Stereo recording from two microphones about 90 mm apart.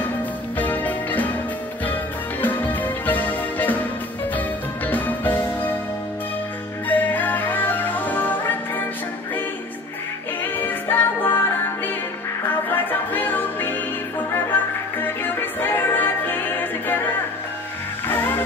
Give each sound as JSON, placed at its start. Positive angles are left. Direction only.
{"t": 0.6, "sound": "music", "side_deg": 20}
{"t": 2.4, "sound": "music", "side_deg": 20}
{"t": 6.9, "sound": "music", "side_deg": 20}
{"t": 10.7, "sound": "music", "side_deg": 25}